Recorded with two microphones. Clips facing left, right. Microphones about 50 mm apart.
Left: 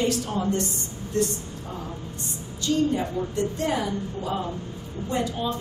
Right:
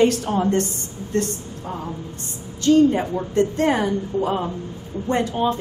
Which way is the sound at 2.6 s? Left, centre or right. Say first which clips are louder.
Right 8 dB; right.